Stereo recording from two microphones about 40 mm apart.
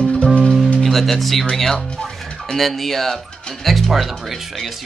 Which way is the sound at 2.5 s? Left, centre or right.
Centre.